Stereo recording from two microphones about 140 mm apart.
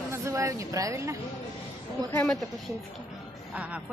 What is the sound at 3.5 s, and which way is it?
Music, 10° right (ahead or behind).